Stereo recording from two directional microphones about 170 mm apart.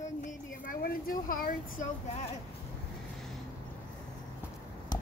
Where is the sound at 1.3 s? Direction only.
55° left (ahead or behind).